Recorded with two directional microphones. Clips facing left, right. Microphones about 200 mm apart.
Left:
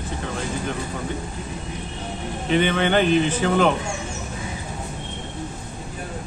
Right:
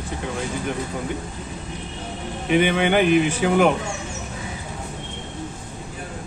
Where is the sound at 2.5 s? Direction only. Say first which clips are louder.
Right 1 dB; 10° right (ahead or behind).